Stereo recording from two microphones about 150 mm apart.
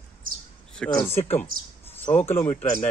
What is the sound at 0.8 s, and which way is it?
Speech, 5° left (ahead or behind).